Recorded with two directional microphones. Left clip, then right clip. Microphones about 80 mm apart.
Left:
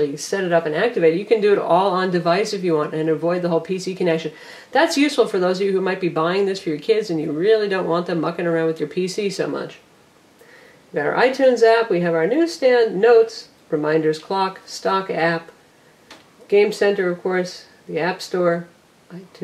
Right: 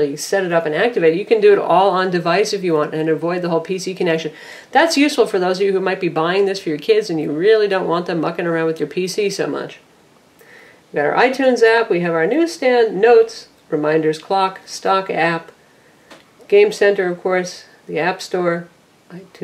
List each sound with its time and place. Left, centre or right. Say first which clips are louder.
0.0 s speech: right 4 dB; right
10.9 s speech: right 3 dB; right
16.4 s speech: right 4 dB; right